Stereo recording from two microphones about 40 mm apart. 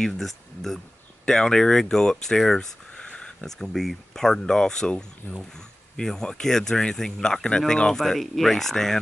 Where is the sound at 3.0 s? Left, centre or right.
Left.